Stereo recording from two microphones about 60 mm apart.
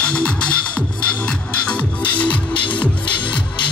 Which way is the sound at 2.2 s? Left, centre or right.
Left.